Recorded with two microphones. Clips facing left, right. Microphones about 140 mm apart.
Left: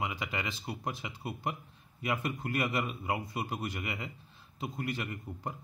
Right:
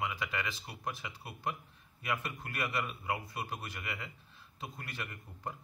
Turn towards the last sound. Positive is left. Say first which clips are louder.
# left 4 dB
turn(degrees=15)  # may be behind; listen again after turning